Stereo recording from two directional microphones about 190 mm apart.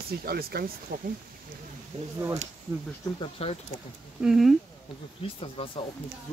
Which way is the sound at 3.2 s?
30° left (ahead or behind).